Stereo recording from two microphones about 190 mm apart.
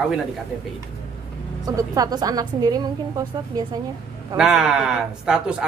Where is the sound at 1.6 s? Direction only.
20° right (ahead or behind).